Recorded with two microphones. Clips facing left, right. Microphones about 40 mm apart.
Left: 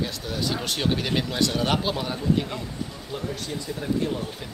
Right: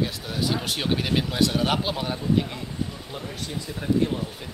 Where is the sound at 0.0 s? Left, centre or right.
Centre.